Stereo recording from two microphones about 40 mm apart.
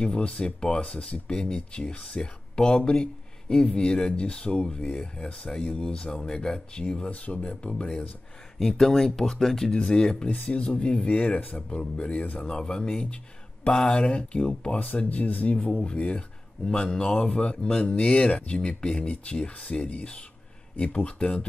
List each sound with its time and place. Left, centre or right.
0.0 s speech: left
8.5 s speech: centre
10.3 s speech: left
15.0 s speech: left
15.8 s speech: left